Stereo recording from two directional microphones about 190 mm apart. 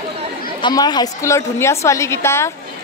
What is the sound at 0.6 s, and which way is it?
A woman's voice, 20° left (ahead or behind).